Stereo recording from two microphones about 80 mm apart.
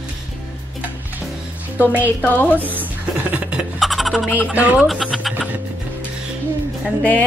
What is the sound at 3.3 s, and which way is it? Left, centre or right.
Music, centre.